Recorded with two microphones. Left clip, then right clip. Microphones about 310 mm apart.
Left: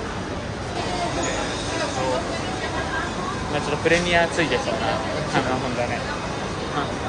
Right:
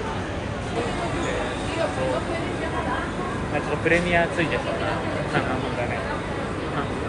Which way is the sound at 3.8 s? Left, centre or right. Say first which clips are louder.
Left 2 dB; left.